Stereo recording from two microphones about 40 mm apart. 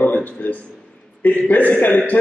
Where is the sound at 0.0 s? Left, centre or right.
Left.